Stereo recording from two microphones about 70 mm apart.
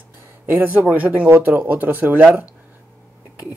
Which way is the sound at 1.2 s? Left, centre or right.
Right.